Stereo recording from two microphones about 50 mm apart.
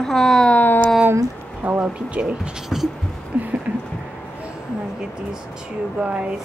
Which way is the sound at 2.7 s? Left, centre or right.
Centre.